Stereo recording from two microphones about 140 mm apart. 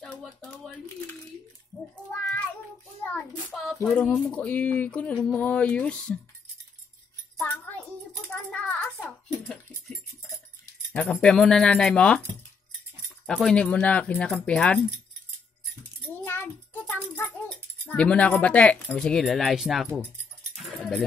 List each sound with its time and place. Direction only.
0.0 s a sound: 5° left (ahead or behind)
2.0 s child singing: 10° left (ahead or behind)
3.8 s speech: 5° left (ahead or behind)
7.3 s music: 10° left (ahead or behind)
10.9 s speech: 5° left (ahead or behind)
13.3 s speech: 5° left (ahead or behind)
16.3 s music: 15° left (ahead or behind)
17.8 s speech: 10° left (ahead or behind)
20.6 s a sound: 5° left (ahead or behind)